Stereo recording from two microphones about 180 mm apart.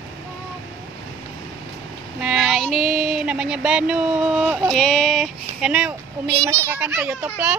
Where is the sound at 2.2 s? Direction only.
5° right (ahead or behind).